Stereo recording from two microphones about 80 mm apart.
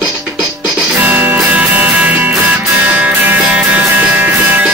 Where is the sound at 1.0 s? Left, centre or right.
Right.